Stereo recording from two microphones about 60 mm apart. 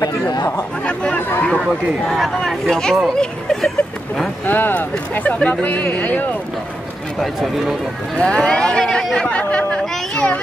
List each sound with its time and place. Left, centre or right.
0.8 s a sound: centre
1.7 s speech: centre
4.5 s speech: left
7.2 s speech: centre
8.2 s speech: centre
9.3 s chatter: left
9.8 s a sound: centre